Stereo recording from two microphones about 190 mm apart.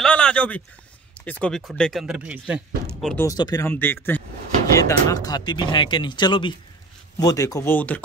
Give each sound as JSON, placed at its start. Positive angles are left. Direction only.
{"t": 0.0, "sound": "a sound", "side_deg": 5}
{"t": 1.2, "sound": "speech", "side_deg": 5}
{"t": 3.2, "sound": "speech", "side_deg": 20}